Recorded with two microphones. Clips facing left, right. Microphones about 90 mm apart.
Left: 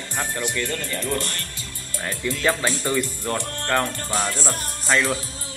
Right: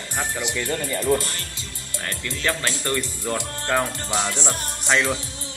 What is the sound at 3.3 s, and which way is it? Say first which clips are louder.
Speech: even; 10° right (ahead or behind).